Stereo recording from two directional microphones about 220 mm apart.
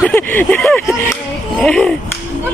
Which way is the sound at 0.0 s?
10° left (ahead or behind).